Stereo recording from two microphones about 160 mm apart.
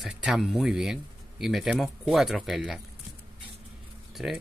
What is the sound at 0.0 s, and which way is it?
Speech, centre (ahead or behind).